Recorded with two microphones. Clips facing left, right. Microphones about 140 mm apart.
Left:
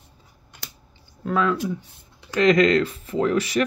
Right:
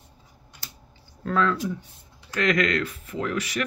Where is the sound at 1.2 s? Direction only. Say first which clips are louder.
Left 2 dB; 10° left (ahead or behind).